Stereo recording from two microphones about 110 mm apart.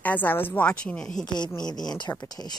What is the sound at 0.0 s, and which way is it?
A woman's voice, 15° left (ahead or behind).